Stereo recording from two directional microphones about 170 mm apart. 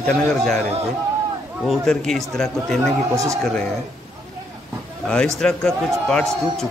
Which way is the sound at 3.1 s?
20° right (ahead or behind).